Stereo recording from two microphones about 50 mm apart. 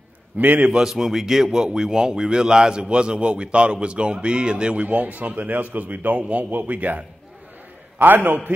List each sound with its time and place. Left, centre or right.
0.4 s a man's voice: right
0.7 s a man's voice: centre
4.8 s a man's voice: right
8.0 s a man's voice: right